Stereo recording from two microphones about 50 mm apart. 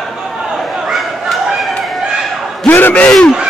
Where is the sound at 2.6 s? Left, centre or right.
Left.